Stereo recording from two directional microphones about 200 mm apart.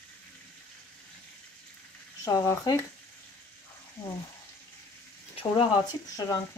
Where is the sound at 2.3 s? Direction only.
15° left (ahead or behind).